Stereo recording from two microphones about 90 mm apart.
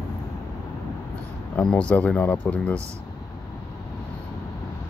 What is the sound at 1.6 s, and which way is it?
Speech, 10° left (ahead or behind).